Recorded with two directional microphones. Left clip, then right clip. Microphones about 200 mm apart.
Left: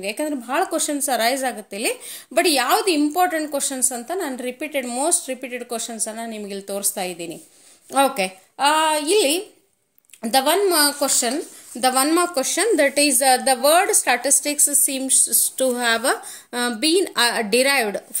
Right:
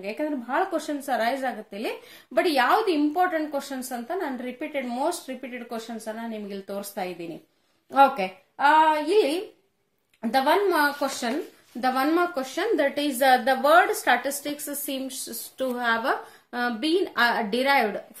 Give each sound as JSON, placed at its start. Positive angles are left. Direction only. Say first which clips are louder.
{"t": 0.0, "sound": "a woman's voice", "louder": "left 4 dB", "side_deg": 45}